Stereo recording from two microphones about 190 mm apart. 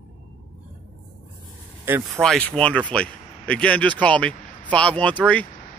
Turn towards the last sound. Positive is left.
turn(degrees=5)  # may be behind; listen again after turning